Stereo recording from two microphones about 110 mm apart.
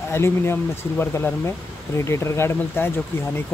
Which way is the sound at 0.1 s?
25° left (ahead or behind).